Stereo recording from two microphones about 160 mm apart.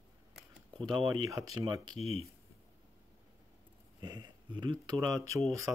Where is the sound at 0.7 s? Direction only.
25° right (ahead or behind).